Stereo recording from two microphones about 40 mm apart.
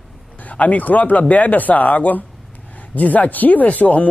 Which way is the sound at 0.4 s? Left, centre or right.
Left.